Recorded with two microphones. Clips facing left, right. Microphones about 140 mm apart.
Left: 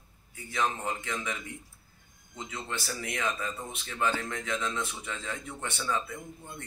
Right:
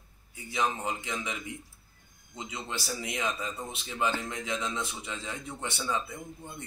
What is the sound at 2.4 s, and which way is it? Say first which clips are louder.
A man's voice: even; 15° right (ahead or behind).